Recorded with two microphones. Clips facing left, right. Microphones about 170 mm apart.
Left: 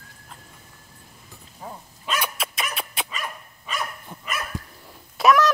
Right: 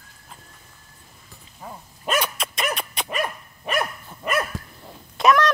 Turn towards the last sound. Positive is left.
turn(degrees=0)  # may be behind; listen again after turning